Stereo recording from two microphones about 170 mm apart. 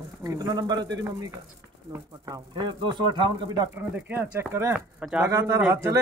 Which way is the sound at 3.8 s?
10° right (ahead or behind).